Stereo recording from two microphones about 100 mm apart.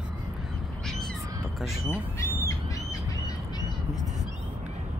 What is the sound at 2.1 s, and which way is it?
Bird, 35° left (ahead or behind).